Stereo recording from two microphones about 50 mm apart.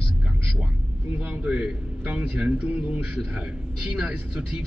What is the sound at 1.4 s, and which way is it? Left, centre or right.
A man's voice, right.